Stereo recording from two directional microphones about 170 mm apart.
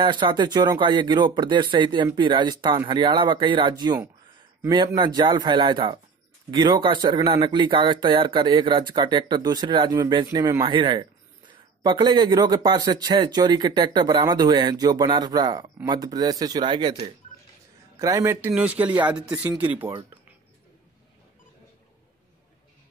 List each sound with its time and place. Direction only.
0.0 s speech: 25° right (ahead or behind); by 19.9 s 10° right (ahead or behind)